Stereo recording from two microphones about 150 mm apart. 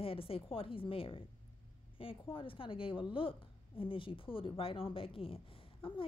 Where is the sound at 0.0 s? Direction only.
40° left (ahead or behind).